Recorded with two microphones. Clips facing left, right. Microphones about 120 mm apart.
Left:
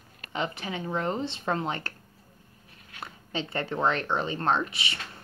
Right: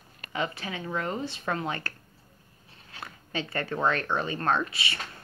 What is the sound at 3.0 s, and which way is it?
A woman's voice, 20° left (ahead or behind).